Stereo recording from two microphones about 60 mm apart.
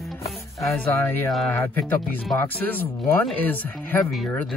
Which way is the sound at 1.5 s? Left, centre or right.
Left.